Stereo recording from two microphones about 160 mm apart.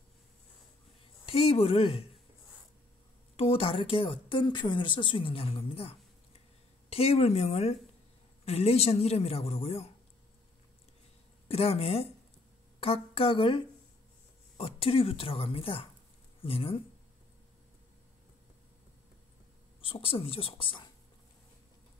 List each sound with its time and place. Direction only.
1.2 s speech: 40° left (ahead or behind)
3.3 s speech: 35° left (ahead or behind)
11.4 s speech: 40° left (ahead or behind)
14.6 s speech: 35° left (ahead or behind)
19.8 s speech: 35° left (ahead or behind)